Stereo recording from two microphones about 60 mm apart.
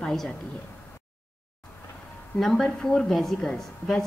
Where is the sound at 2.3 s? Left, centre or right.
Centre.